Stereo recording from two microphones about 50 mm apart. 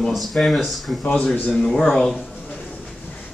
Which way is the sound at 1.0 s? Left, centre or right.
Centre.